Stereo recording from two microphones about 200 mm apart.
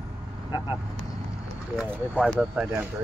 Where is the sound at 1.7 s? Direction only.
5° right (ahead or behind).